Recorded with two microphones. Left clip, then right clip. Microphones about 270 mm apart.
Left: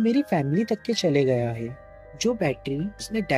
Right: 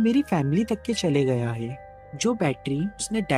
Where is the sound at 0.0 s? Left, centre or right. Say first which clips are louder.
Even; right.